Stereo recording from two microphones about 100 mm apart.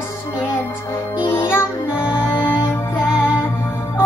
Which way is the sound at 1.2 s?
25° left (ahead or behind).